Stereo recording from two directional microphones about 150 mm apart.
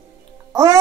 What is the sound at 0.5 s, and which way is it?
Speech, 20° right (ahead or behind).